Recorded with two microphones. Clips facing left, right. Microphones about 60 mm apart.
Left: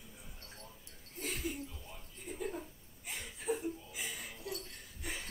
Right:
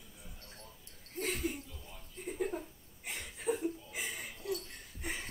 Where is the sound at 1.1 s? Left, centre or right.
Right.